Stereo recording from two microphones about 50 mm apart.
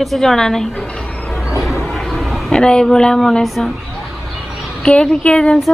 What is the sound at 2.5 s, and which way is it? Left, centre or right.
Speech, centre.